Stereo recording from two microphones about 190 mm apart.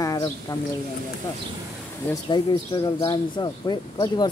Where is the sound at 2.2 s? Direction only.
25° left (ahead or behind).